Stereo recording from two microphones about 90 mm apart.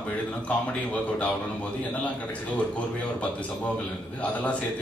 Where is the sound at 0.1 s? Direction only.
15° left (ahead or behind).